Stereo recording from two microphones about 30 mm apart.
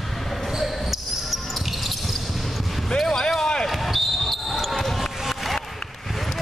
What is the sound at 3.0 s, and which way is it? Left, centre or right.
Basketball bounce, left.